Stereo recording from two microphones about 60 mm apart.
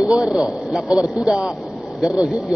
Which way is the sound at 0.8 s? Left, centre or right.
Left.